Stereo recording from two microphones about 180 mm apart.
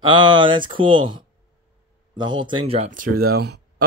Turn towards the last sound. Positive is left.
turn(degrees=-60)  # may be behind; listen again after turning